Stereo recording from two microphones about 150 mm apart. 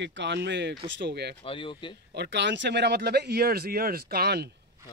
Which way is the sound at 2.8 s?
90° right.